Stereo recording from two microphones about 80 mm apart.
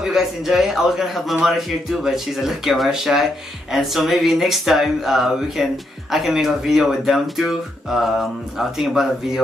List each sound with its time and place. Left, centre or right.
0.1 s speech: centre